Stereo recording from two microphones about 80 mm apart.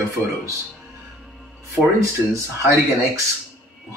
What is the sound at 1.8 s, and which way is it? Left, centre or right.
Speech, right.